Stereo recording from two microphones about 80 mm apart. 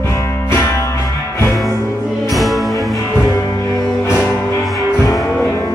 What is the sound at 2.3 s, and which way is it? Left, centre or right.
Music, centre.